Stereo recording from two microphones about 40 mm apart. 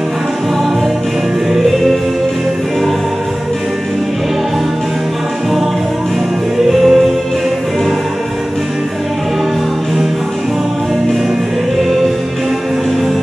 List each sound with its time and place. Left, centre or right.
6.7 s music: centre